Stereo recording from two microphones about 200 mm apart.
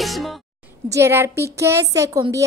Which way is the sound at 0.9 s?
15° right (ahead or behind).